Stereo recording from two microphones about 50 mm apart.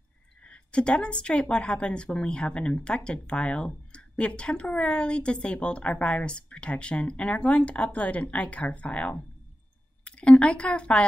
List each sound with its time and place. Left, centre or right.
0.4 s a woman's voice: left